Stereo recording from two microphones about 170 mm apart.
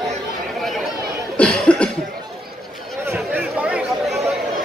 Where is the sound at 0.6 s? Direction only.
Centre (ahead or behind).